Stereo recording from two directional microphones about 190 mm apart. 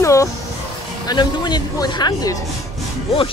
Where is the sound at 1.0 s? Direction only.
20° left (ahead or behind).